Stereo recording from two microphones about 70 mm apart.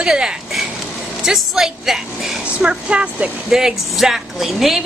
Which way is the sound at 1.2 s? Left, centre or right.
Centre.